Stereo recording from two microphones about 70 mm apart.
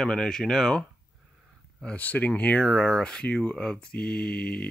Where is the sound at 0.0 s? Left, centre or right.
Centre.